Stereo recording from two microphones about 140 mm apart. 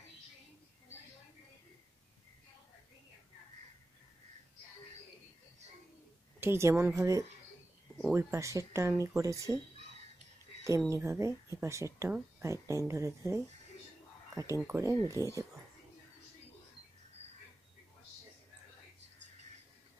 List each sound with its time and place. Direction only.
6.4 s speech: 20° right (ahead or behind)
10.9 s speech: 20° right (ahead or behind)